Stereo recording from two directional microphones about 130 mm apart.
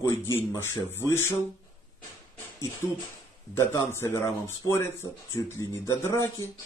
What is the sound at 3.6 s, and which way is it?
A man's voice, 20° left (ahead or behind).